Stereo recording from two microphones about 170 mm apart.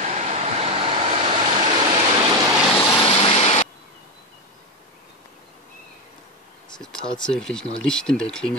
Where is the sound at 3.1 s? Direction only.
35° left (ahead or behind).